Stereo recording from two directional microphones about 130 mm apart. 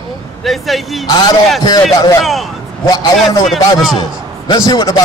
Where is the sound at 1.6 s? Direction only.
30° left (ahead or behind).